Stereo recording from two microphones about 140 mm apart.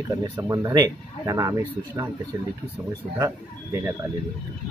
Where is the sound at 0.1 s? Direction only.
20° right (ahead or behind).